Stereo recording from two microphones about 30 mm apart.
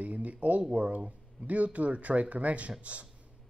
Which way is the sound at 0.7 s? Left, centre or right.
Right.